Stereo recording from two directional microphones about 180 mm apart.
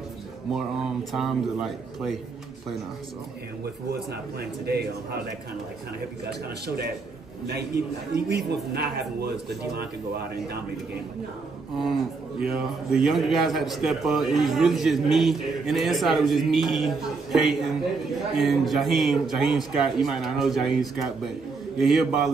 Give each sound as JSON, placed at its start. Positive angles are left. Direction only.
{"t": 1.1, "sound": "a man's voice", "side_deg": 0}
{"t": 4.1, "sound": "a man's voice", "side_deg": -65}
{"t": 6.6, "sound": "a man's voice", "side_deg": -65}
{"t": 11.8, "sound": "a man's voice", "side_deg": 0}